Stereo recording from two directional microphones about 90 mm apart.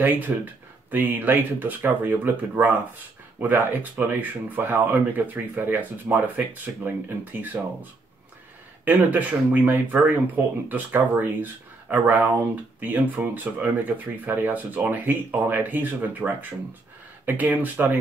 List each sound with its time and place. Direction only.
0.0 s speech: 20° right (ahead or behind)
8.8 s speech: 20° right (ahead or behind)